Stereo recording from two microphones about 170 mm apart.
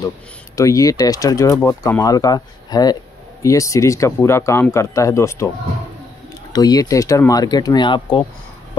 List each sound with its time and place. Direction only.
0.6 s speech: 20° left (ahead or behind)
6.5 s speech: 20° left (ahead or behind)